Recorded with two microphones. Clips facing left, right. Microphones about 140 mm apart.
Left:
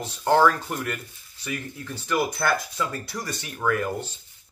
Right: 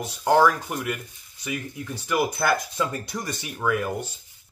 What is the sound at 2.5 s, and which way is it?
Speech, 20° right (ahead or behind).